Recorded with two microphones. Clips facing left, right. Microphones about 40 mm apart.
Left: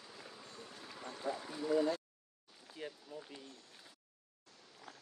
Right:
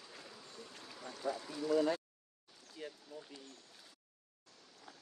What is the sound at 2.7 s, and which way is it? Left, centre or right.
Speech, centre.